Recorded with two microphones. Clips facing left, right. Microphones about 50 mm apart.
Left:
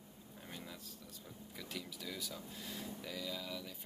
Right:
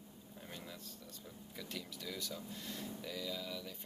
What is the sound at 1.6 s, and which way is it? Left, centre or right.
Speech, centre.